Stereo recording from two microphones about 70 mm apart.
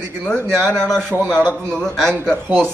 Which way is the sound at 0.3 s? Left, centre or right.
Centre.